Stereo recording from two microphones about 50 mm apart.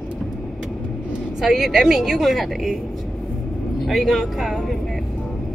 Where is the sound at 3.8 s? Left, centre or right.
Centre.